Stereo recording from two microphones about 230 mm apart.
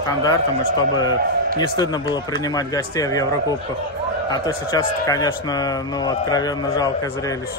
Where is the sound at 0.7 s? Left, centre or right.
Centre.